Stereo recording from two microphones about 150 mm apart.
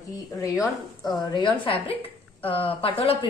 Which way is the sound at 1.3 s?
35° left (ahead or behind).